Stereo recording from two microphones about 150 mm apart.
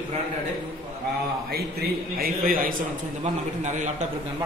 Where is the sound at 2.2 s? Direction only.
70° right (ahead or behind).